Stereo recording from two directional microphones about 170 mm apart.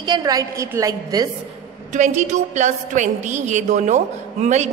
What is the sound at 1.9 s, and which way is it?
A woman's voice, 40° right (ahead or behind).